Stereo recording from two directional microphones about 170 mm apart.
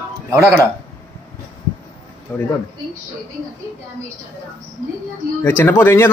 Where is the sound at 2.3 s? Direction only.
5° left (ahead or behind).